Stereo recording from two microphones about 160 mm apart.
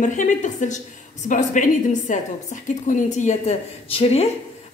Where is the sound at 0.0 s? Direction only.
50° left (ahead or behind).